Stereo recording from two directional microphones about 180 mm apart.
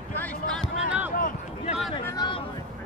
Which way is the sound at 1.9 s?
30° left (ahead or behind).